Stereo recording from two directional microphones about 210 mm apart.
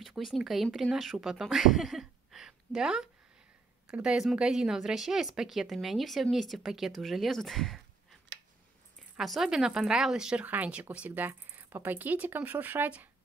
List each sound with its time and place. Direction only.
0.0 s a woman's voice: centre (ahead or behind)
8.3 s a sound: 60° right (ahead or behind)
9.1 s speech: centre (ahead or behind)